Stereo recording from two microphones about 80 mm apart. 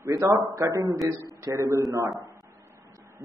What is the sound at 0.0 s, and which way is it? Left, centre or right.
A man's voice, right.